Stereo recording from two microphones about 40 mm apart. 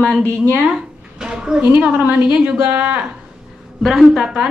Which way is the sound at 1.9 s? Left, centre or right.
Right.